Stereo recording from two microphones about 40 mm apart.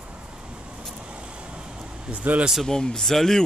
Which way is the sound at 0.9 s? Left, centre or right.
Right.